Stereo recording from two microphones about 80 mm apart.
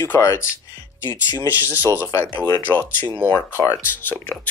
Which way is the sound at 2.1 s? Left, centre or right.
Left.